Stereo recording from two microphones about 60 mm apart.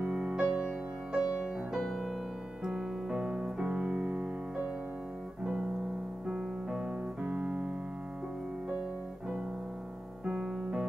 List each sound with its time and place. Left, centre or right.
0.0 s music: centre
2.6 s music: centre
5.4 s music: centre
10.2 s music: centre